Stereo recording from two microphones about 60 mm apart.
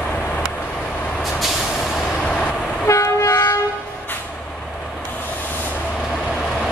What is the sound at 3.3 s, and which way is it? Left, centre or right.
Vehicle, left.